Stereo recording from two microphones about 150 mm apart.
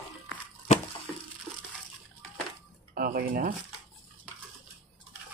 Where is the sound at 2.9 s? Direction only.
75° right (ahead or behind).